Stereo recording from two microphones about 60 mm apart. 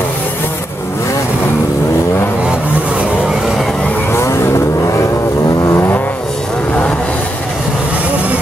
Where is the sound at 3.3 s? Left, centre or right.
Centre.